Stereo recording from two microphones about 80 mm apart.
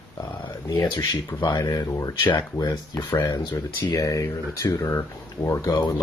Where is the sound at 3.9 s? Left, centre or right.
Left.